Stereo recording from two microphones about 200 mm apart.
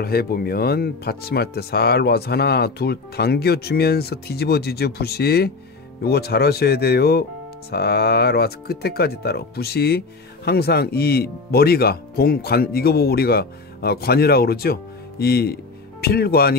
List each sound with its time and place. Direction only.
0.0 s speech: 50° left (ahead or behind)